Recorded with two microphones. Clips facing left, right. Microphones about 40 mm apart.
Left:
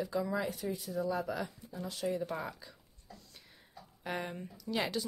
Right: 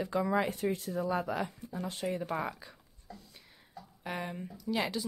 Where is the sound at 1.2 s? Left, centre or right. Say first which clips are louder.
Right 3 dB; right.